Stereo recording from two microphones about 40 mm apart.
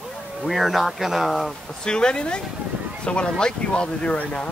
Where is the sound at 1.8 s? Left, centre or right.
Left.